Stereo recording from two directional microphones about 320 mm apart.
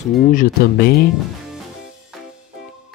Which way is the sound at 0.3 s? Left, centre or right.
Left.